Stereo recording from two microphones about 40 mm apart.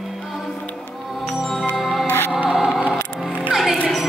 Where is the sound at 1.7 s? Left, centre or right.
Centre.